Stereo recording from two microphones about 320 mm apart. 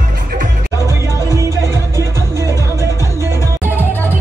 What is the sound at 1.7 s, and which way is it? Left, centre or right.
Music, centre.